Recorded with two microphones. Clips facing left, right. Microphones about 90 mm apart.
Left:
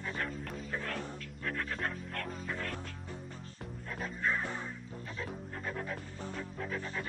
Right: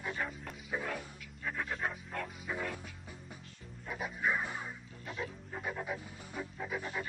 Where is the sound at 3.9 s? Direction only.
10° right (ahead or behind).